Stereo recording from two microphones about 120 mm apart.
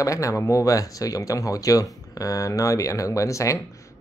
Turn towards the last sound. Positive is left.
turn(degrees=25)  # may be behind; listen again after turning